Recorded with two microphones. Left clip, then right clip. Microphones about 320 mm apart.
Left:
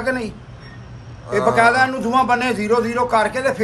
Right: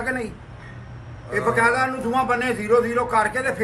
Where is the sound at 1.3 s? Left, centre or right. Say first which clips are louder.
Left 5 dB; left.